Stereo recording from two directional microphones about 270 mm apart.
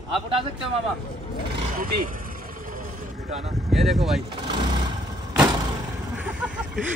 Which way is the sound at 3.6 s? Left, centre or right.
Centre.